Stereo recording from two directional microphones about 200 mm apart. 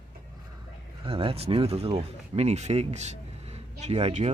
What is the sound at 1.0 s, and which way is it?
Speech, 30° right (ahead or behind).